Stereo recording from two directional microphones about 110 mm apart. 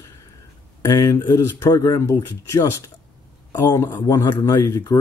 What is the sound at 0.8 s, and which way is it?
Speech, 30° left (ahead or behind).